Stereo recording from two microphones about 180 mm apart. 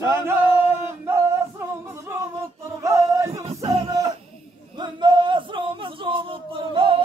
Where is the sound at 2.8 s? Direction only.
15° right (ahead or behind).